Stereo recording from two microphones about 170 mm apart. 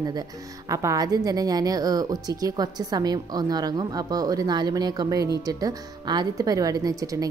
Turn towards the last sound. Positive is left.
turn(degrees=-20)  # may be behind; listen again after turning